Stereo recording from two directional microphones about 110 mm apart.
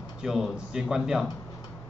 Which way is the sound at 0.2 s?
5° right (ahead or behind).